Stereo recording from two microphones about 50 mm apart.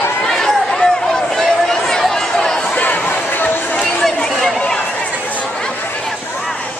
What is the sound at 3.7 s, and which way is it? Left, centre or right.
Chatter, left.